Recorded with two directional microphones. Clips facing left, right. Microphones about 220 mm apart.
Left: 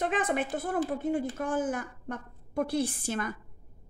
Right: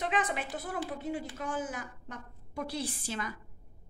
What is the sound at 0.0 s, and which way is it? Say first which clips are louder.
A woman's voice: left 4 dB; 50° left (ahead or behind).